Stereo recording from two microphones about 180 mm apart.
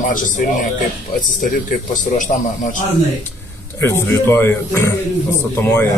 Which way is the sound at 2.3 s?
45° left (ahead or behind).